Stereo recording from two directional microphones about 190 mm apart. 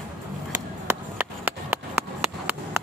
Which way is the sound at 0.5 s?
10° right (ahead or behind).